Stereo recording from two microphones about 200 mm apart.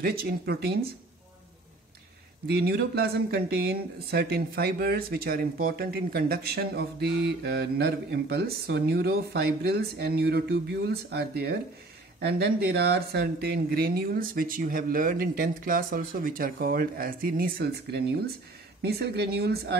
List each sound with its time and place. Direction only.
0.0 s speech: 50° right (ahead or behind)
2.4 s speech: 55° right (ahead or behind)